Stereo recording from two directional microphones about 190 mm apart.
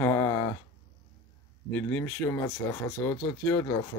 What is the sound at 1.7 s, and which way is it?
Speech, 10° left (ahead or behind).